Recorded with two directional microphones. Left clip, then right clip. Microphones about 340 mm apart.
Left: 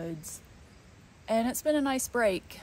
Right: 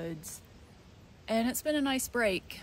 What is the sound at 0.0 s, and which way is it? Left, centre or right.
Speech, centre.